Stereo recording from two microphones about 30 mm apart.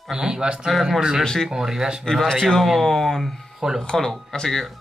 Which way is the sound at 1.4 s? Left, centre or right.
Centre.